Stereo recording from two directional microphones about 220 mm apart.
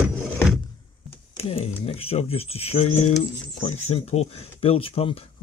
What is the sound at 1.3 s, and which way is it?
Speech, 25° left (ahead or behind).